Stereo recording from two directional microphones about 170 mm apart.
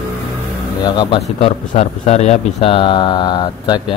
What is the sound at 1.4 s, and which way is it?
Speech, 40° left (ahead or behind).